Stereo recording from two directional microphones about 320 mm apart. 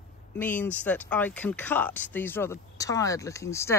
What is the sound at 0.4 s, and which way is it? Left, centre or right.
Speech, centre.